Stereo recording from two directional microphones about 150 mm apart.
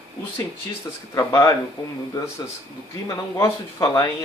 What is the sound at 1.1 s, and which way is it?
Speech, 20° left (ahead or behind).